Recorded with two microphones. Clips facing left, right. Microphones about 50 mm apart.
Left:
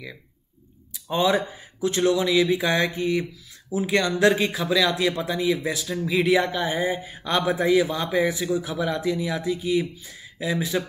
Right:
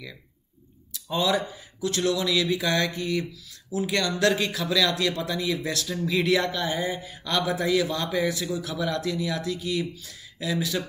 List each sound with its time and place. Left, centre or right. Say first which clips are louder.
1.0 s speech: left 3 dB; left